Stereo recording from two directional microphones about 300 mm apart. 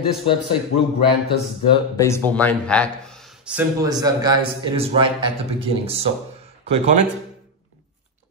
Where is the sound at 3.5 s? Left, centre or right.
Centre.